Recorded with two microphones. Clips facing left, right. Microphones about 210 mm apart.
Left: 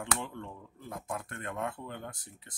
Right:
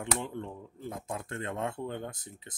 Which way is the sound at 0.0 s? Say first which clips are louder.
Right 3 dB; 20° right (ahead or behind).